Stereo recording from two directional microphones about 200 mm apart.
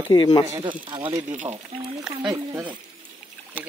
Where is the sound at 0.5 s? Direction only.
25° right (ahead or behind).